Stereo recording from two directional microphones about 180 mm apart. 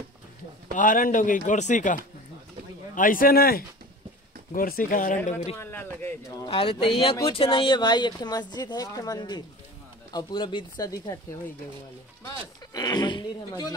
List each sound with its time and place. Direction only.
0.7 s speech: 50° left (ahead or behind)
5.6 s speech: 10° left (ahead or behind)
6.4 s speech: 30° left (ahead or behind)
12.3 s speech: 20° left (ahead or behind)